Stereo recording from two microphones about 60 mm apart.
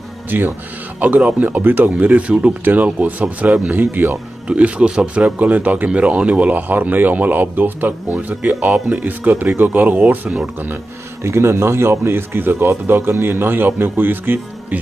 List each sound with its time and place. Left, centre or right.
0.3 s a man's voice: right; by 3.7 s centre
3.7 s a man's voice: right
4.5 s a man's voice: right
8.7 s speech: centre
9.0 s a man's voice: right
11.2 s a man's voice: right